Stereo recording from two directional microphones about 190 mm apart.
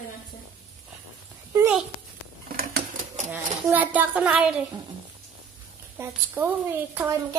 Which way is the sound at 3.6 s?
10° right (ahead or behind).